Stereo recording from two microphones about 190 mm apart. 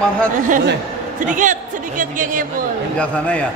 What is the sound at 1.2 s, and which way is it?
Speech, 45° right (ahead or behind).